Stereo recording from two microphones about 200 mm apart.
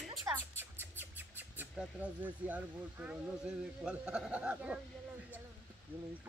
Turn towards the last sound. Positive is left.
turn(degrees=-5)  # may be behind; listen again after turning